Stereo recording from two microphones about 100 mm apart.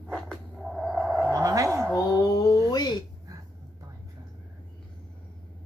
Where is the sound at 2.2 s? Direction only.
40° left (ahead or behind).